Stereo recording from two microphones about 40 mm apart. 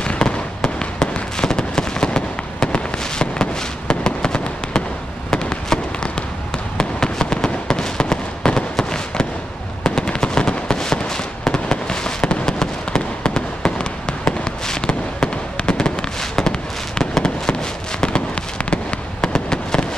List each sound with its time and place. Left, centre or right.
0.0 s fireworks: left
0.6 s fireworks: centre
18.0 s fireworks: left